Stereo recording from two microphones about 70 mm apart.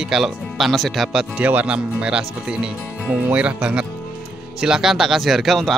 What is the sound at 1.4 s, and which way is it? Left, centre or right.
A man's voice, right.